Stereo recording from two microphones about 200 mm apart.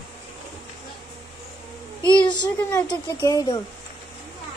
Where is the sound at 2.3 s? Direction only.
15° left (ahead or behind).